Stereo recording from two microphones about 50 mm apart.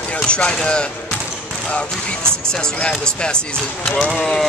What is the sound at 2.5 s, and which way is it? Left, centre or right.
Speech, centre.